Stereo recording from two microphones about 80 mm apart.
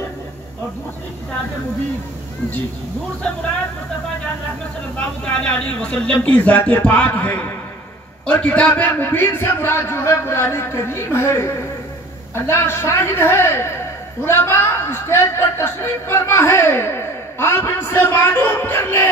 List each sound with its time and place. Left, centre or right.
5.2 s a man's voice: centre